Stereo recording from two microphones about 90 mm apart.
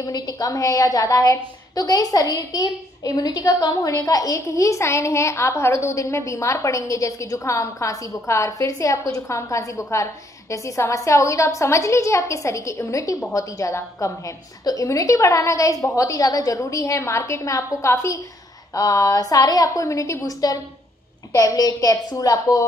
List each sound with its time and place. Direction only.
0.0 s a woman's voice: 45° left (ahead or behind)